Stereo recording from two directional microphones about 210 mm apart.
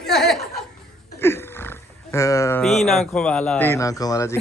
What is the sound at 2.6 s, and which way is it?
Speech, centre (ahead or behind).